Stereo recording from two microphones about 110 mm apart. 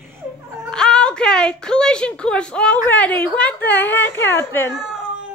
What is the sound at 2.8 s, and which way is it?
Speech, 15° left (ahead or behind).